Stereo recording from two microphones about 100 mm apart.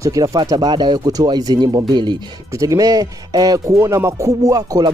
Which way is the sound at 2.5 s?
35° right (ahead or behind).